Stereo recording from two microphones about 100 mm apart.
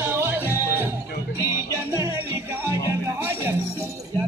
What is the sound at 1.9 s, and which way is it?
Music, 25° right (ahead or behind).